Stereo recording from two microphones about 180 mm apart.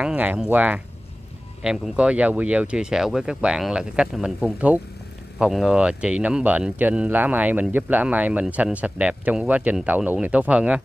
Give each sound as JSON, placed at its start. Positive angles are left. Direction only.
{"t": 0.0, "sound": "speech", "side_deg": -10}